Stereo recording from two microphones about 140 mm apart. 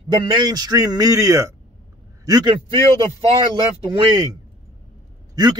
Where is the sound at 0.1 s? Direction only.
30° right (ahead or behind).